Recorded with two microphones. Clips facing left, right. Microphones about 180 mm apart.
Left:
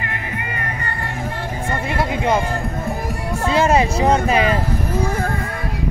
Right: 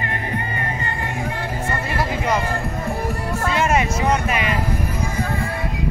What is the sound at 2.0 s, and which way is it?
Music, 25° left (ahead or behind).